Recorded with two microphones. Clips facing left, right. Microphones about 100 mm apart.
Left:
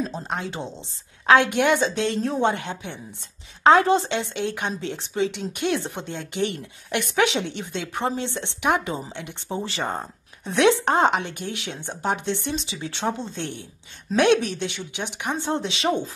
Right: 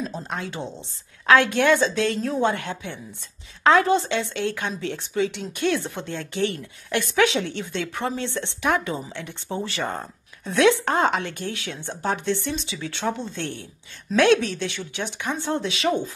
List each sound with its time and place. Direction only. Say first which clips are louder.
0.3 s a woman's voice: left 1 dB; 25° left (ahead or behind)